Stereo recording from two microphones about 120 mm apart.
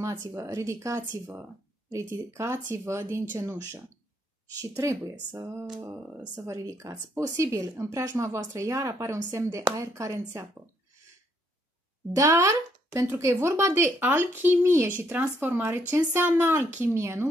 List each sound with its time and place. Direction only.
0.0 s speech: 20° right (ahead or behind)
12.2 s speech: 25° right (ahead or behind)